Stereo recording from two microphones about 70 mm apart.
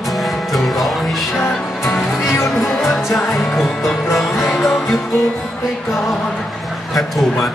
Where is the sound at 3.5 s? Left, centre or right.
Centre.